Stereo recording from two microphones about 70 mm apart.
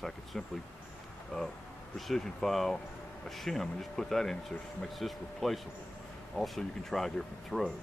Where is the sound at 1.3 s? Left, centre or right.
Left.